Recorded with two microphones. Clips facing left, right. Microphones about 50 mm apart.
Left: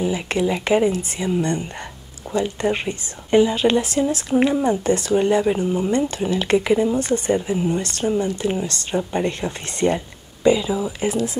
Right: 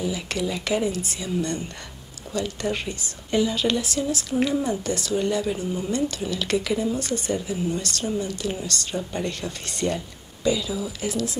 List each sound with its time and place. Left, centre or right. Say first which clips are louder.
0.0 s speech: left 6 dB; left